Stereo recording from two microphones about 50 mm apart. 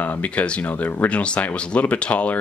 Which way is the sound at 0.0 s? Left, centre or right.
Left.